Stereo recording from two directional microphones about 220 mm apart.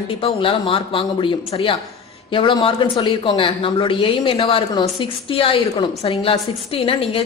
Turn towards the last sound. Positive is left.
turn(degrees=25)  # may be behind; listen again after turning